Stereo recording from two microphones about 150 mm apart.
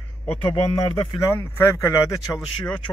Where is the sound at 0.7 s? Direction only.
30° left (ahead or behind).